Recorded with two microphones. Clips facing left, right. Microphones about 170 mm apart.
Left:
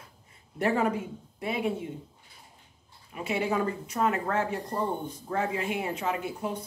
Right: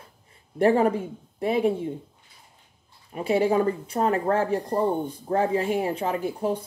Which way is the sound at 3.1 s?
35° right (ahead or behind).